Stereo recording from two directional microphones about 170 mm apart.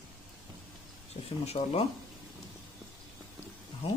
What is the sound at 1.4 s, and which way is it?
Speech, 35° left (ahead or behind).